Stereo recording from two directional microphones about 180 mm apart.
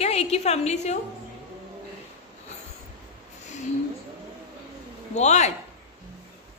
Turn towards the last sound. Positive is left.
turn(degrees=40)  # may be behind; listen again after turning